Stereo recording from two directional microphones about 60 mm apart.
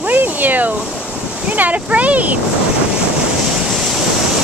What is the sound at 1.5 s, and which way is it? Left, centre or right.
Speech, right.